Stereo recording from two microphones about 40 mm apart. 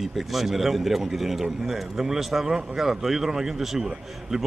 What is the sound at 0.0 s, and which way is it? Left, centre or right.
A man's voice, centre.